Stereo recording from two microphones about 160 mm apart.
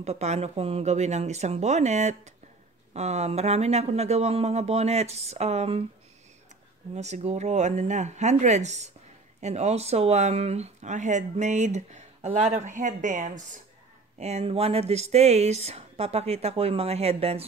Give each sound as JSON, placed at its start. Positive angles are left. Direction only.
{"t": 0.0, "sound": "speech", "side_deg": -45}
{"t": 7.0, "sound": "speech", "side_deg": -45}